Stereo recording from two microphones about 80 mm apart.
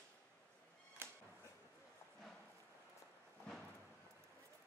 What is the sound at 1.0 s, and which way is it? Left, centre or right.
Music, right.